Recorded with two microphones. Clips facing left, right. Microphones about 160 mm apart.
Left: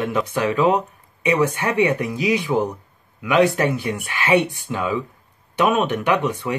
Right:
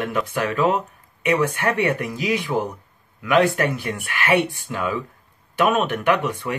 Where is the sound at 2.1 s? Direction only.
15° left (ahead or behind).